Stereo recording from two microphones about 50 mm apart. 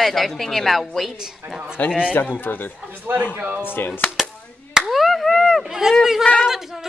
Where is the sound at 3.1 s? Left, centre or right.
Right.